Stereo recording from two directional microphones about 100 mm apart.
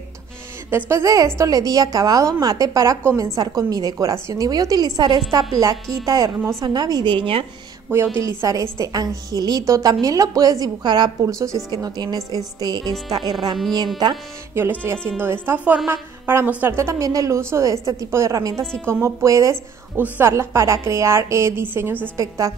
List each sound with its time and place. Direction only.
0.7 s a woman's voice: 25° right (ahead or behind); by 5.2 s 45° right (ahead or behind)
5.5 s a woman's voice: 35° right (ahead or behind); by 7.4 s 60° right (ahead or behind)
7.9 s a woman's voice: 25° right (ahead or behind); by 14.2 s 40° right (ahead or behind)
14.5 s a woman's voice: 20° right (ahead or behind)
22.1 s a woman's voice: 35° right (ahead or behind)